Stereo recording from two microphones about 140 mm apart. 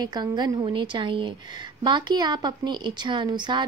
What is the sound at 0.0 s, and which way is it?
A woman's voice, 30° right (ahead or behind).